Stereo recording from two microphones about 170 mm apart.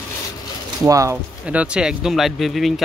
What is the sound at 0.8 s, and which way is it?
Speech, 20° right (ahead or behind).